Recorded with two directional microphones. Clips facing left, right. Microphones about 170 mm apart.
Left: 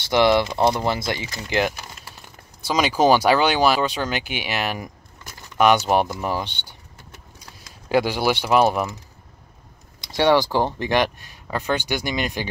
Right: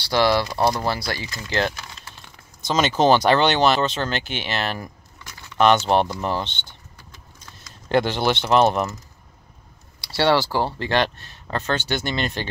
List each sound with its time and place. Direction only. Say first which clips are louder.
0.1 s speech: left 2 dB; 20° left (ahead or behind)
1.4 s a sound: left 1 dB; 15° left (ahead or behind)
2.7 s speech: even; 10° left (ahead or behind)
9.9 s speech: left 2 dB; 20° left (ahead or behind)